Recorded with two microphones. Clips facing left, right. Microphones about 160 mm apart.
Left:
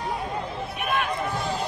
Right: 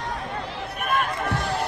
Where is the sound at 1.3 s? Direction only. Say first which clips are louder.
Right 2 dB; 75° right (ahead or behind).